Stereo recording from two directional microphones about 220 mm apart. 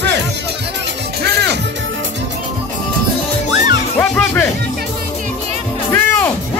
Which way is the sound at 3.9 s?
10° left (ahead or behind).